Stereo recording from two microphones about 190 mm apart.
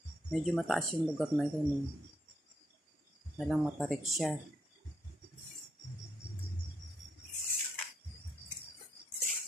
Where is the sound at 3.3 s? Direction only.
Centre (ahead or behind).